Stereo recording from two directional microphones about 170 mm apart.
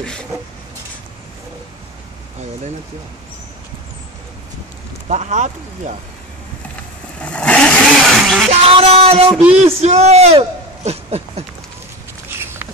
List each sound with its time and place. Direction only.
0.0 s speech: 5° left (ahead or behind)
5.0 s speech: 45° right (ahead or behind)
7.2 s vehicle: 5° left (ahead or behind)
8.6 s music: 35° right (ahead or behind)
9.5 s a man's voice: 40° right (ahead or behind)
12.3 s a sound: 15° right (ahead or behind)